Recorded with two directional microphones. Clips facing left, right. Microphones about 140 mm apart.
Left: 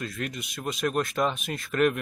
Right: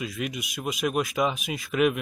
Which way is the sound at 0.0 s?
5° right (ahead or behind).